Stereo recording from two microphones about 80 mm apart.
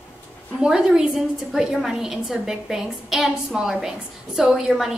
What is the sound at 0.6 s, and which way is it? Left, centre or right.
A woman's voice, centre.